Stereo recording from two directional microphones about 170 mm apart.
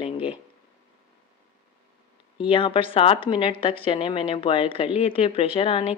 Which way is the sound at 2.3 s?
30° left (ahead or behind).